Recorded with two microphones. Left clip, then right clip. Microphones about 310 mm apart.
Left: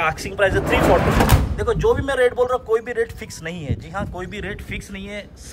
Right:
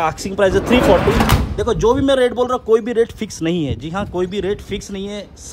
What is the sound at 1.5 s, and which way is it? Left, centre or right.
A man's voice, centre.